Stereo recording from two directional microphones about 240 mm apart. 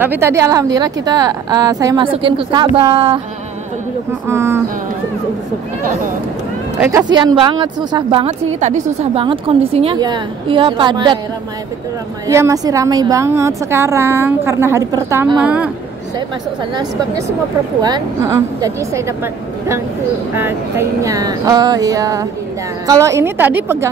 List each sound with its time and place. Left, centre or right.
0.0 s a woman's voice: centre
4.3 s a woman's voice: centre
6.8 s a woman's voice: centre
7.1 s a woman's voice: centre
8.5 s a woman's voice: right
12.3 s a woman's voice: centre
17.8 s a woman's voice: centre
20.3 s a woman's voice: centre